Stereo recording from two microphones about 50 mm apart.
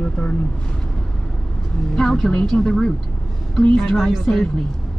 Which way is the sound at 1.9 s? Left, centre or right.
Centre.